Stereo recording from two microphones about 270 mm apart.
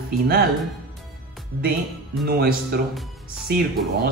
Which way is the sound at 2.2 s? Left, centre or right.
Right.